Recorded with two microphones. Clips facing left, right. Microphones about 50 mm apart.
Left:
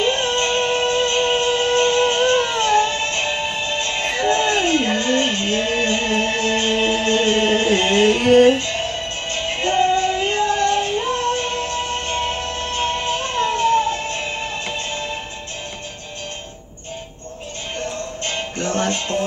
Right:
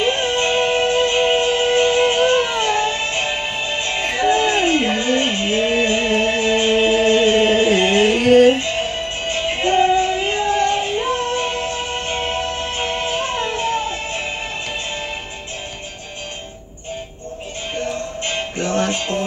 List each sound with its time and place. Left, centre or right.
0.0 s music: centre
8.5 s music: centre
17.7 s music: centre